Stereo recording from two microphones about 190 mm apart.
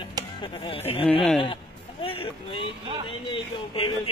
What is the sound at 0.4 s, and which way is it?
Speech, 25° left (ahead or behind).